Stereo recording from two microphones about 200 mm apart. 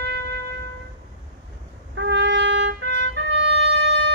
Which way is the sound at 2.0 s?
60° right (ahead or behind).